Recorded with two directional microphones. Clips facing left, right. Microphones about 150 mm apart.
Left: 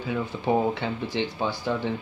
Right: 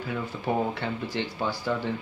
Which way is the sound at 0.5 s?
20° left (ahead or behind).